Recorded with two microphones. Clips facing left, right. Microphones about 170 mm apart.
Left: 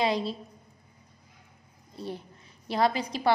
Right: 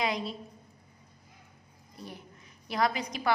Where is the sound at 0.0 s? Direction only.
30° left (ahead or behind).